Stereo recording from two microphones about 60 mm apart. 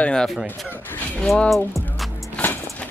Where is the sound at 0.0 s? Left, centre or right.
Centre.